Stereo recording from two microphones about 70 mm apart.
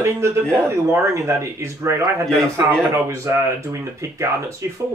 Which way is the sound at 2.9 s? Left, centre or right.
Right.